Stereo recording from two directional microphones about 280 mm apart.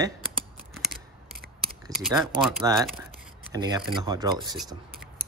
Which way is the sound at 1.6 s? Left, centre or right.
Centre.